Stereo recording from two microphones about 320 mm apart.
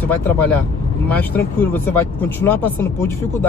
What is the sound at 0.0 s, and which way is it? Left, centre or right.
A man's voice, centre.